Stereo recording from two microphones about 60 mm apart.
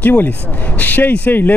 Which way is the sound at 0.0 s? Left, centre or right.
Left.